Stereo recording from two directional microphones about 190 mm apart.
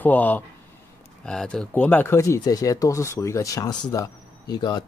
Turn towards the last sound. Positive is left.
turn(degrees=20)  # may be behind; listen again after turning